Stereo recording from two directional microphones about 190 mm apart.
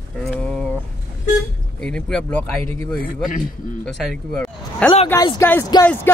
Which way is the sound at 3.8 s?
Centre (ahead or behind).